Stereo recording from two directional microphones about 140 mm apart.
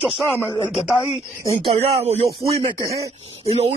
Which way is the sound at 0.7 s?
Centre (ahead or behind).